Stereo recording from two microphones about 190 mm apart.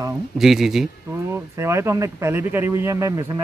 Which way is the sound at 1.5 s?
15° right (ahead or behind).